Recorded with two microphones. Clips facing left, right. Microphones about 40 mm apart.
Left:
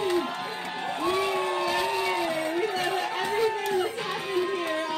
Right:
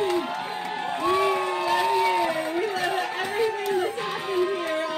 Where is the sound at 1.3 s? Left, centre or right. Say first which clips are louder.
Right 2 dB; right.